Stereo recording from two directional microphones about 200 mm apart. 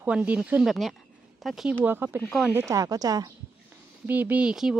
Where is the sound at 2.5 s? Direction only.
15° right (ahead or behind).